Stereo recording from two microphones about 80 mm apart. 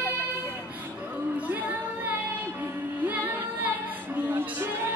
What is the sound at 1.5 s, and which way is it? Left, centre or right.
Music, right.